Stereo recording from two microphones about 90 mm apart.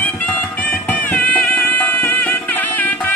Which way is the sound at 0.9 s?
20° left (ahead or behind).